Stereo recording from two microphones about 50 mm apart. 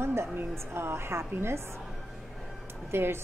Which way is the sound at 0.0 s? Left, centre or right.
Right.